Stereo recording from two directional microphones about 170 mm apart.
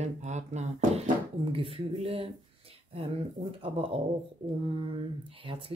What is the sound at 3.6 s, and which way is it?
Speech, 35° right (ahead or behind).